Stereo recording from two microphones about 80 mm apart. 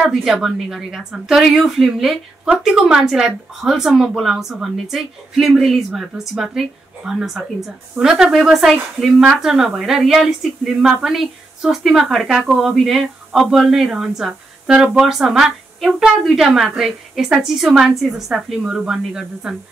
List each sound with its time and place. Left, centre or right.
0.0 s speech: centre